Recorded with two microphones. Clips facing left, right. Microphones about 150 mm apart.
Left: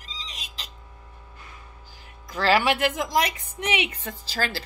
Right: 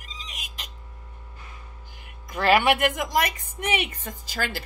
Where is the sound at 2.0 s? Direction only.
55° right (ahead or behind).